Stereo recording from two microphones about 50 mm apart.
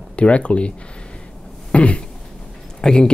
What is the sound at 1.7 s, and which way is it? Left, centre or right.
Throat clearing, left.